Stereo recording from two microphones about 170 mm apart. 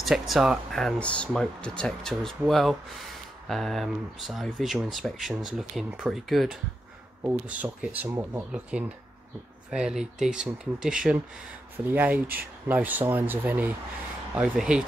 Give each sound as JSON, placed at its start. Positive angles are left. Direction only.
{"t": 0.0, "sound": "speech", "side_deg": 0}